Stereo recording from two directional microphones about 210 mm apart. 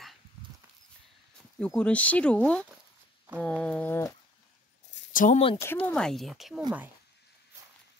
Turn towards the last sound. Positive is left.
turn(degrees=0)  # may be behind; listen again after turning